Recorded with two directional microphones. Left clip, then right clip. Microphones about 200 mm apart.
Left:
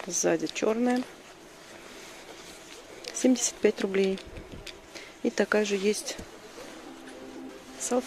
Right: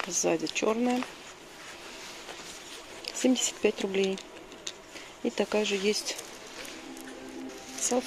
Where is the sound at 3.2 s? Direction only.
15° left (ahead or behind).